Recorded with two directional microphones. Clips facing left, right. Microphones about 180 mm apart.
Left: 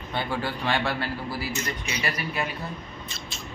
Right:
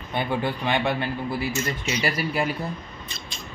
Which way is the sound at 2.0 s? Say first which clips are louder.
Right 5 dB; 30° right (ahead or behind).